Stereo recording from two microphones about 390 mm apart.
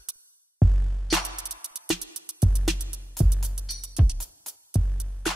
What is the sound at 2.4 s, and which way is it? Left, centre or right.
Music, centre.